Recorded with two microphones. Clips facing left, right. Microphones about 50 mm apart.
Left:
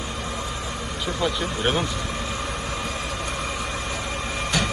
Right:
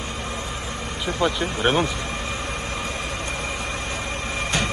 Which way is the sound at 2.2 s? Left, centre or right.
Right.